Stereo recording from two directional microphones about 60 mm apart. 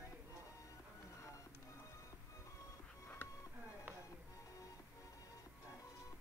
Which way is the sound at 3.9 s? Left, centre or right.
Right.